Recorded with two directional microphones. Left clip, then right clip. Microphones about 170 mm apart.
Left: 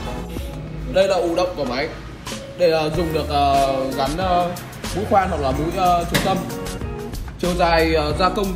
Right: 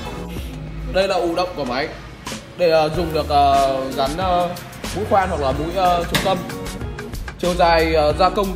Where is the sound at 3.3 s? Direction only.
20° right (ahead or behind).